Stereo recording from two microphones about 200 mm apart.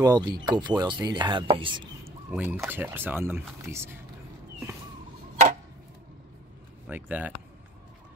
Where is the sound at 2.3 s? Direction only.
5° right (ahead or behind).